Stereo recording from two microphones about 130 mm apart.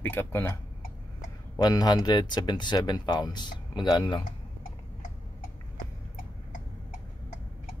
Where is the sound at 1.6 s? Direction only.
30° left (ahead or behind).